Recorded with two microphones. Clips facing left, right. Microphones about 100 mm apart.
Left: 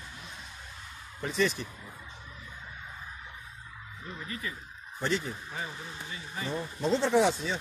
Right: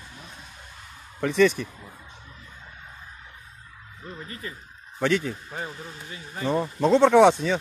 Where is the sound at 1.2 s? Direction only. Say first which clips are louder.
Right 9 dB; 70° right (ahead or behind).